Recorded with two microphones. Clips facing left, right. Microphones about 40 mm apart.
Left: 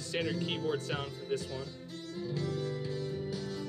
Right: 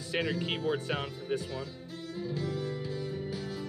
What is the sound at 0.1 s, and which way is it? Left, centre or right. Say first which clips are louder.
Speech: right 2 dB; centre.